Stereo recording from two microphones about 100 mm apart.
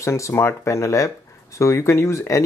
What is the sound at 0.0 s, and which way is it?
Speech, 30° left (ahead or behind).